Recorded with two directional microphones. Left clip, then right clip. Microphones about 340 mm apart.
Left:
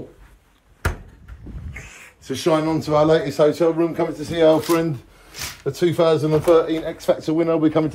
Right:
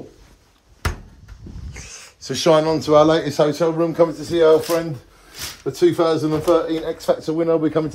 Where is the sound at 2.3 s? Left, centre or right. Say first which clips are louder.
Right 4 dB; right.